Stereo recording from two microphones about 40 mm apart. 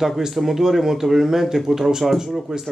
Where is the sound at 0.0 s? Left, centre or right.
Centre.